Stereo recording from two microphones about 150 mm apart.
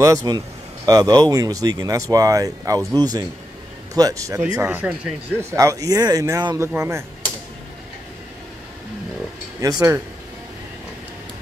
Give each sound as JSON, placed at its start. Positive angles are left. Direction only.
{"t": 0.0, "sound": "speech", "side_deg": -20}
{"t": 9.6, "sound": "speech", "side_deg": -25}